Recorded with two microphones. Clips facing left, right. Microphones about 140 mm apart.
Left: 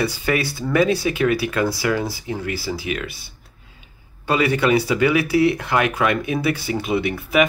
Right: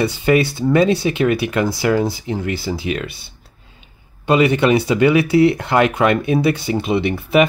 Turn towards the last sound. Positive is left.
turn(degrees=-25)  # may be behind; listen again after turning